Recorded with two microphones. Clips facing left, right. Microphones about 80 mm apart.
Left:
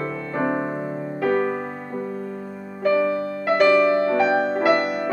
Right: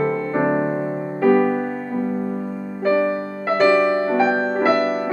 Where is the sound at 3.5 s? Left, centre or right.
Right.